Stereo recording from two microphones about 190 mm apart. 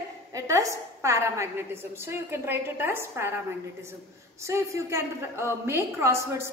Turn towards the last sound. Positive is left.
turn(degrees=-15)  # may be behind; listen again after turning